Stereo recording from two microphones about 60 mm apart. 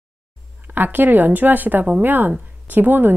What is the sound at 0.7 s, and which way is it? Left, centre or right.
Speech, right.